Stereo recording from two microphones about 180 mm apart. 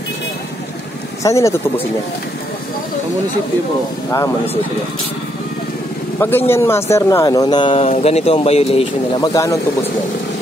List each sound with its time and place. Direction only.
1.2 s speech: 15° left (ahead or behind)
6.1 s speech: 15° left (ahead or behind); by 9.2 s 35° left (ahead or behind)
9.2 s speech: 20° left (ahead or behind)